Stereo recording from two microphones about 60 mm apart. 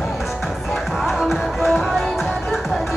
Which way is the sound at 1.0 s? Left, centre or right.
Centre.